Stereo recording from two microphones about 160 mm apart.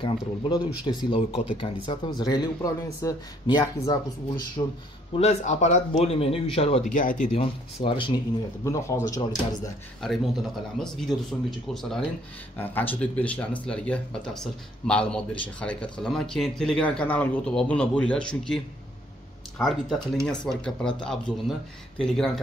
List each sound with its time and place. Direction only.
0.8 s speech: 35° left (ahead or behind)
4.6 s speech: 35° left (ahead or behind)
6.8 s speech: 55° left (ahead or behind)
7.3 s speech: 30° left (ahead or behind)
8.6 s speech: 15° left (ahead or behind)
10.0 s speech: centre (ahead or behind)
19.6 s speech: centre (ahead or behind)